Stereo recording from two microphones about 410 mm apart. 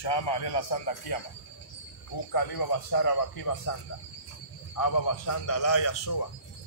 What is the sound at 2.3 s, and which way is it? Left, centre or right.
A man's voice, left.